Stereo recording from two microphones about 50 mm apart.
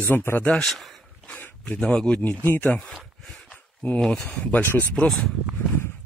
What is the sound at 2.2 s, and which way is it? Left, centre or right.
Speech, left.